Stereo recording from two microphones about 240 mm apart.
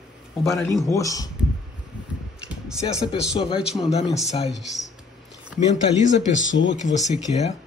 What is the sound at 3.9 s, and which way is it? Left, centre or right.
Speech, left.